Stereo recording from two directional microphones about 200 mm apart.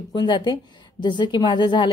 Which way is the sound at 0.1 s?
20° left (ahead or behind).